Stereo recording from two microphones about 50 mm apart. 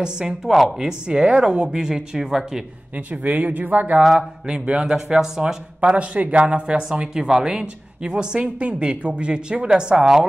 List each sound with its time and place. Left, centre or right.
0.0 s speech: centre
0.5 s speech: centre
0.7 s speech: centre
3.1 s speech: right
4.0 s speech: centre
5.8 s speech: right
7.2 s speech: centre